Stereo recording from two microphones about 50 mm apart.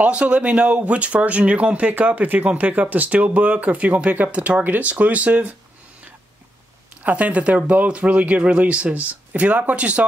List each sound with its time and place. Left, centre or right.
0.0 s speech: right
7.0 s speech: right